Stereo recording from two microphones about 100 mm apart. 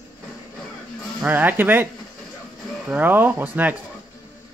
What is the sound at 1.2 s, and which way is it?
Speech, 20° right (ahead or behind).